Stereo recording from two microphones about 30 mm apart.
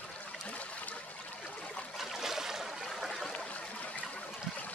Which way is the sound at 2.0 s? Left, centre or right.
Centre.